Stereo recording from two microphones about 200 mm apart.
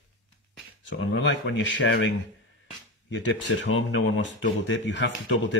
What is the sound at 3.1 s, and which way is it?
Speech, 65° left (ahead or behind).